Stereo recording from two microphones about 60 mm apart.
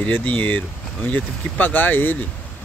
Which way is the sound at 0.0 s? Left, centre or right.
Left.